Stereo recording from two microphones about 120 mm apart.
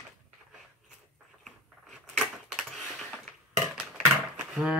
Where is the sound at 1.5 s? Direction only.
Centre (ahead or behind).